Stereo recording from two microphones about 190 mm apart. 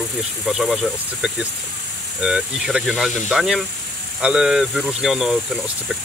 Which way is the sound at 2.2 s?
5° right (ahead or behind).